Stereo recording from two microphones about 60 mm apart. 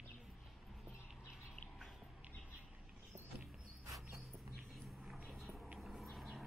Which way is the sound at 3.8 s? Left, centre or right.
Right.